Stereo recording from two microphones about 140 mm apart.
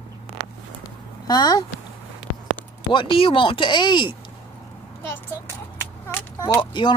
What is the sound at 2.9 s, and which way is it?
Speech, 40° left (ahead or behind).